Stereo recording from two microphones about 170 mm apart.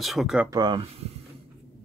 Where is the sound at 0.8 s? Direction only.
35° right (ahead or behind).